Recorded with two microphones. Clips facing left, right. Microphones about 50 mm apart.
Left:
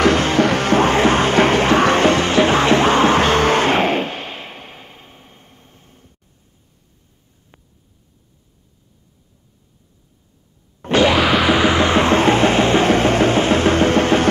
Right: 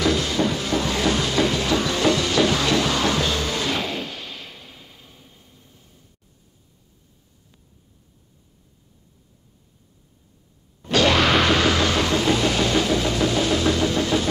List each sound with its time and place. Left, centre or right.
0.0 s music: left
11.1 s music: centre; by 14.2 s left